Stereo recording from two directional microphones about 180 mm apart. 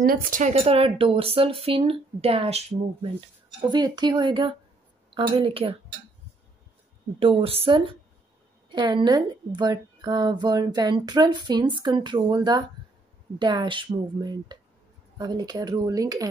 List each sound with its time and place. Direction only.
0.0 s speech: 55° right (ahead or behind); by 5.8 s 30° right (ahead or behind)
7.2 s speech: 30° right (ahead or behind)